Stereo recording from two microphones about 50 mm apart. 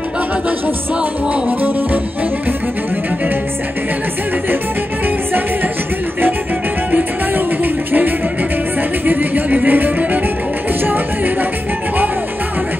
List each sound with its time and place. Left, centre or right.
1.3 s music: right
7.3 s music: right